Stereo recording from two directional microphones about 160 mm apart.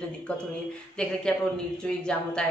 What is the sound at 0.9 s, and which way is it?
A woman's voice, 5° left (ahead or behind).